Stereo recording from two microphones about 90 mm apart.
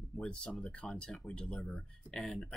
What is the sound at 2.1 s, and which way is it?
Speech, 5° left (ahead or behind).